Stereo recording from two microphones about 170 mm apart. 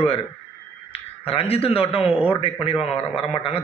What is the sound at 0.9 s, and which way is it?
A man's voice, 35° left (ahead or behind).